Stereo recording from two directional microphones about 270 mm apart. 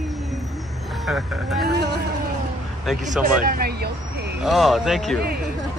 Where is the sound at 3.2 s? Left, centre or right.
Right.